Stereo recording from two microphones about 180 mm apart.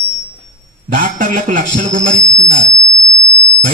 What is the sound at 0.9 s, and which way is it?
A man's voice, 50° right (ahead or behind).